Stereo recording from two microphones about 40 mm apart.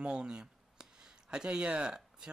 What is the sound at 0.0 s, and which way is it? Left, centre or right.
Speech, right.